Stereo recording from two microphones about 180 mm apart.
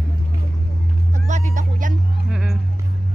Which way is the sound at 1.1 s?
45° right (ahead or behind).